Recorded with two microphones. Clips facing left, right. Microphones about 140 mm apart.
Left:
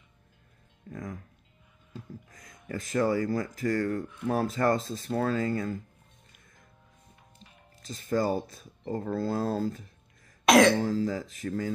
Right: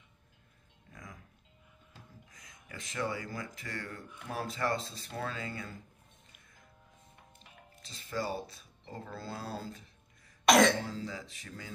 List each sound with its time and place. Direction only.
0.8 s speech: 50° left (ahead or behind)
2.2 s speech: 50° left (ahead or behind)
7.8 s speech: 45° left (ahead or behind)
10.4 s cough: centre (ahead or behind)
10.8 s speech: 45° left (ahead or behind)